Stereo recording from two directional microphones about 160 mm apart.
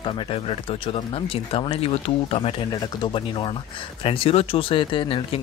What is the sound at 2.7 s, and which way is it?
Speech, 25° left (ahead or behind).